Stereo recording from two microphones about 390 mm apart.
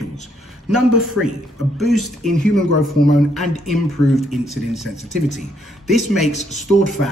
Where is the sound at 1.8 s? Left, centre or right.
Centre.